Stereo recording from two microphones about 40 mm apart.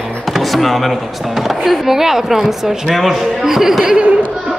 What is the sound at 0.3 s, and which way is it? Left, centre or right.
Speech, centre.